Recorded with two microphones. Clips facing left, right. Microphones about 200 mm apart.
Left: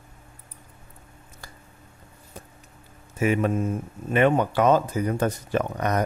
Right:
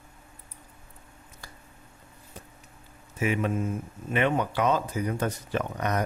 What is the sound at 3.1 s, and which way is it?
Speech, 45° left (ahead or behind).